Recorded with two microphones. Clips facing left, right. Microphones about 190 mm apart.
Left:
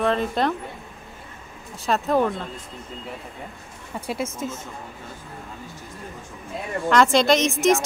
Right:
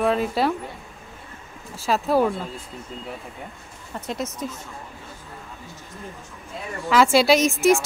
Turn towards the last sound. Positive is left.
turn(degrees=0)  # may be behind; listen again after turning